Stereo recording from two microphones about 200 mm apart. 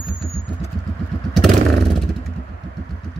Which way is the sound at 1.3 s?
Centre (ahead or behind).